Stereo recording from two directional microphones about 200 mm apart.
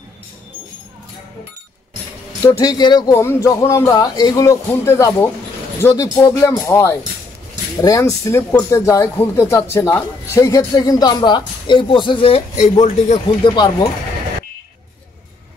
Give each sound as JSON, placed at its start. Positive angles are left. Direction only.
{"t": 2.4, "sound": "speech", "side_deg": 20}
{"t": 13.5, "sound": "speech", "side_deg": 20}